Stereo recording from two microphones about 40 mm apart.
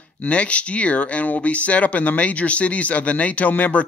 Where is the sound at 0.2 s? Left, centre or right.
Left.